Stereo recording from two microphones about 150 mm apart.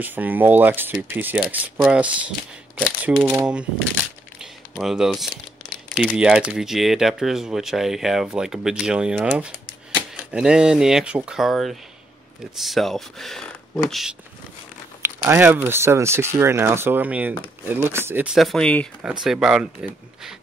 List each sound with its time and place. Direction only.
0.0 s speech: 10° right (ahead or behind)
4.4 s crumpling: 5° right (ahead or behind)
5.9 s a sound: 10° left (ahead or behind)
6.1 s speech: 5° right (ahead or behind)
15.0 s speech: 15° right (ahead or behind); by 18.9 s 5° left (ahead or behind)
19.2 s speech: 5° right (ahead or behind)